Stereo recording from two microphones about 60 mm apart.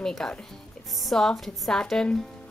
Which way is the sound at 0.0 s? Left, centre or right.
Centre.